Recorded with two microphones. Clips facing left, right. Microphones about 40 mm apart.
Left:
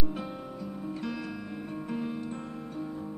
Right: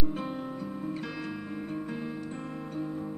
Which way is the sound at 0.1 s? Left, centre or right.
Right.